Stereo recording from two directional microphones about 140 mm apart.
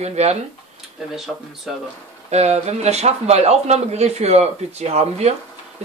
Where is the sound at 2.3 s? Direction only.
50° right (ahead or behind).